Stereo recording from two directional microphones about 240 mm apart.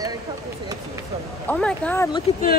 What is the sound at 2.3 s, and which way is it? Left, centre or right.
Speech, left.